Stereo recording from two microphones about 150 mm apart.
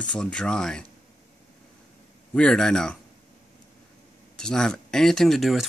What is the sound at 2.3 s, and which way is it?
Speech, 5° left (ahead or behind).